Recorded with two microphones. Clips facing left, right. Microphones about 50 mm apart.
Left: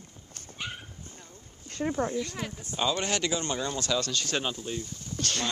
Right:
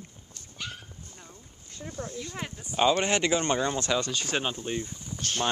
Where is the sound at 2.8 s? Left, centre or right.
Right.